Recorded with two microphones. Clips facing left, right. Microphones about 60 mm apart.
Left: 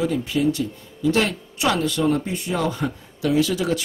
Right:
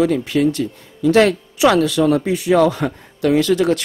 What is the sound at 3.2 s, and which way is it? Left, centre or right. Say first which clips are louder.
Speech: right 6 dB; right.